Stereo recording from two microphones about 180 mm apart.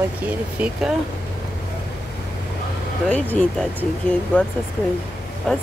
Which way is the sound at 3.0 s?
10° left (ahead or behind).